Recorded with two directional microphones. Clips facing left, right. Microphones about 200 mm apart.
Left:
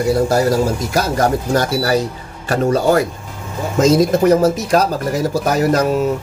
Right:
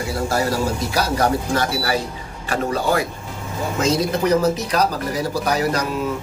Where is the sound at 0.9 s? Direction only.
45° left (ahead or behind).